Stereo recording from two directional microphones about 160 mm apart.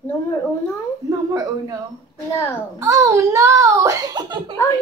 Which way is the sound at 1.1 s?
20° right (ahead or behind).